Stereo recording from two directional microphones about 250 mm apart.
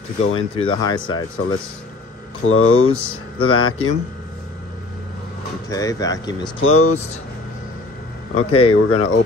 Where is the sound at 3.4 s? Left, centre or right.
Left.